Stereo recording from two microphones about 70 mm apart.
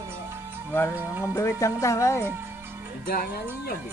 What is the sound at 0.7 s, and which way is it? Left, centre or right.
Speech, left.